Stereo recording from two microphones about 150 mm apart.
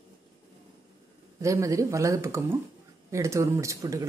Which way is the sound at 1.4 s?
20° right (ahead or behind).